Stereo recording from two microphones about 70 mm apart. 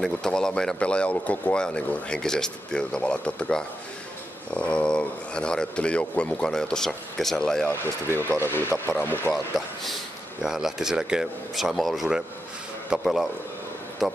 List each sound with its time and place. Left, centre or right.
0.0 s speech: centre
7.8 s speech: right
8.4 s speech: left
9.6 s a man's voice: centre